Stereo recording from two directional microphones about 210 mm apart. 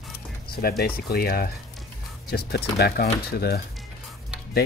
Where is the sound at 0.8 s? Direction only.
45° left (ahead or behind).